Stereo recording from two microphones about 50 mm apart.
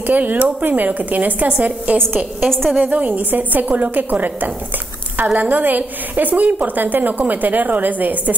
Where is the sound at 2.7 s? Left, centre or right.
Right.